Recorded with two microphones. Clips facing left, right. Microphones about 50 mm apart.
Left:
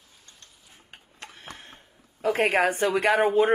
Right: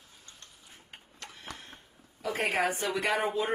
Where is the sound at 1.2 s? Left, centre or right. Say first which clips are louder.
Left 2 dB; left.